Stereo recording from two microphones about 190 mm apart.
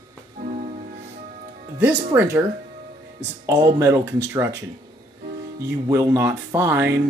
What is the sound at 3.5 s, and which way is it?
Speech, 15° right (ahead or behind).